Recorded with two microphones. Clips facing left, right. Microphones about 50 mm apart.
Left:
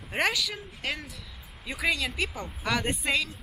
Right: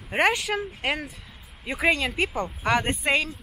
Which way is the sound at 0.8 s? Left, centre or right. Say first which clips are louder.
Right 6 dB; right.